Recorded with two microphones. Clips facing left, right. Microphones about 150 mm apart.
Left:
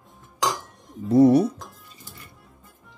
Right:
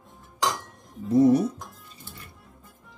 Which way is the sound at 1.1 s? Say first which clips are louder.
Left 3 dB; 70° left (ahead or behind).